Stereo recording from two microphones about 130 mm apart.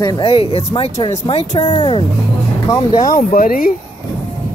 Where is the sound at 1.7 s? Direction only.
40° left (ahead or behind).